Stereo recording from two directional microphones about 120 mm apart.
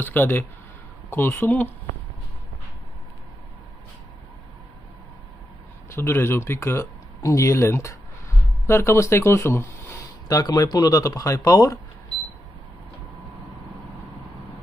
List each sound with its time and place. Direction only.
0.0 s speech: 15° left (ahead or behind)
5.9 s speech: 20° left (ahead or behind)